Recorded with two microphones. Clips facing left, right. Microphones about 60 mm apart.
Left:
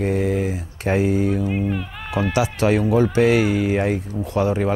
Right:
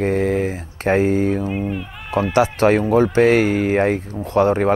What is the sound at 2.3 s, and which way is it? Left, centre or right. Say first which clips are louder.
Speech: right 5 dB; right.